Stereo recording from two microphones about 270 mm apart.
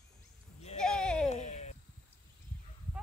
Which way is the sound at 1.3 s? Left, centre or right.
Left.